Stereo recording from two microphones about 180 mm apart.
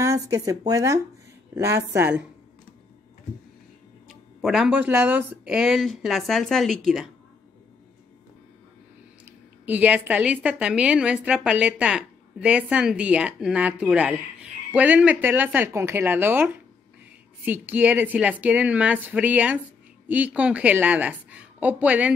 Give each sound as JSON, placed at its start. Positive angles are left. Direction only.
{"t": 0.0, "sound": "a woman's voice", "side_deg": -15}
{"t": 4.1, "sound": "speech", "side_deg": 0}
{"t": 9.7, "sound": "a woman's voice", "side_deg": -10}